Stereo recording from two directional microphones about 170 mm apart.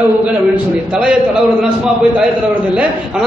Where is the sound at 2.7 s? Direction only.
5° right (ahead or behind).